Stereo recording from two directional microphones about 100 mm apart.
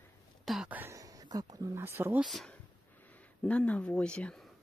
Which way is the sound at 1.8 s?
25° right (ahead or behind).